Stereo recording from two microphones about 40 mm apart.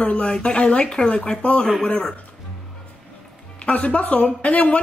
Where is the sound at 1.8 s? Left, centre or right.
Centre.